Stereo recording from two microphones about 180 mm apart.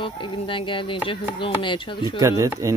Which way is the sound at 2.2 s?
15° right (ahead or behind).